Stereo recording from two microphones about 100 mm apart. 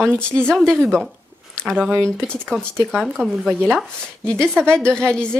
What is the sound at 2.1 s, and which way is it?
Speech, 5° left (ahead or behind).